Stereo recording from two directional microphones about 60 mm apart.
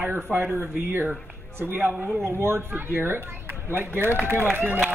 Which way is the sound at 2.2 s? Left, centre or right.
Right.